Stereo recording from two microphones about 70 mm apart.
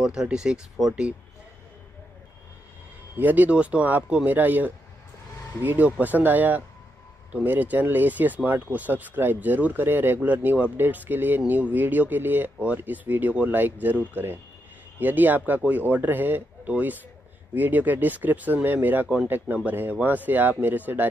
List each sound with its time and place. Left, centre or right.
0.0 s speech: centre
3.2 s speech: right